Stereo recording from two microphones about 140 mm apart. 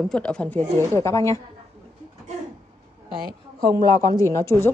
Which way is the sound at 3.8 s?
25° left (ahead or behind).